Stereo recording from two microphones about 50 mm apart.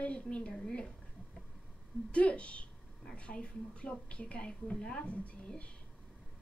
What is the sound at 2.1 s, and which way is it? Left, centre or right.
A woman's voice, left.